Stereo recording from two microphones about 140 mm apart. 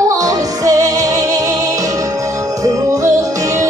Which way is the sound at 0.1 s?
25° right (ahead or behind).